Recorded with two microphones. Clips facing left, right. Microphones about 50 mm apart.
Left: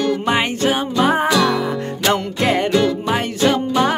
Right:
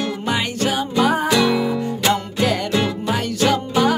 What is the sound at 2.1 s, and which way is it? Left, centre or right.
Music, left.